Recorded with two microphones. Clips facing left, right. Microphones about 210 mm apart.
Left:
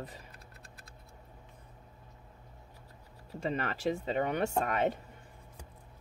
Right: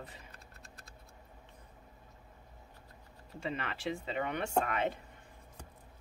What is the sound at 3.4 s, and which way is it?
Speech, 40° left (ahead or behind).